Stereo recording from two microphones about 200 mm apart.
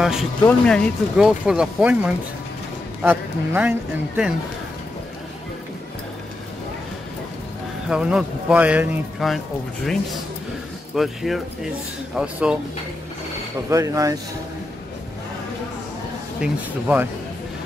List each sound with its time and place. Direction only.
0.0 s speech: centre (ahead or behind)
7.9 s speech: 5° right (ahead or behind)
11.0 s speech: centre (ahead or behind)
13.7 s speech: 15° right (ahead or behind)
16.3 s speech: 5° right (ahead or behind)